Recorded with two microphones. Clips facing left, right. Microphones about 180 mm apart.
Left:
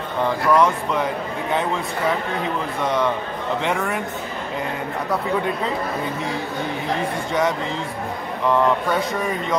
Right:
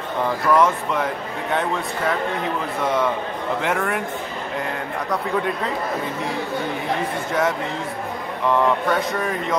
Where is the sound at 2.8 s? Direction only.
Centre (ahead or behind).